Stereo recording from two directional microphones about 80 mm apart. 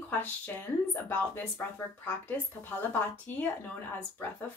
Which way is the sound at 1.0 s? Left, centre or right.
Left.